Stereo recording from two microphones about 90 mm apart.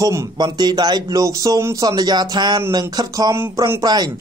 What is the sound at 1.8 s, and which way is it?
Speech, 50° right (ahead or behind).